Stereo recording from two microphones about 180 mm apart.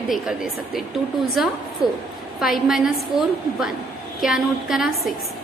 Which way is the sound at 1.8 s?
20° left (ahead or behind).